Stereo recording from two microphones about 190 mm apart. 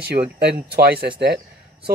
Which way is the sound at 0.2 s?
40° right (ahead or behind).